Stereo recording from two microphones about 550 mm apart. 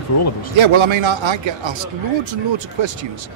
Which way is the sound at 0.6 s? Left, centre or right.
Right.